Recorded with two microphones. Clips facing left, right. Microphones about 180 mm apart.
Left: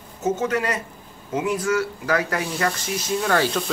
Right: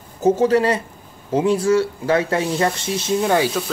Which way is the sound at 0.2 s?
30° right (ahead or behind).